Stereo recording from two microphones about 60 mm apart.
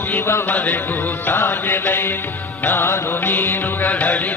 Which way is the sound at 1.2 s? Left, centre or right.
Left.